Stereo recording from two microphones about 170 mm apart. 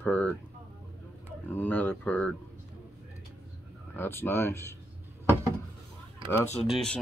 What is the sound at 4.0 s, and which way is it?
Speech, 15° left (ahead or behind).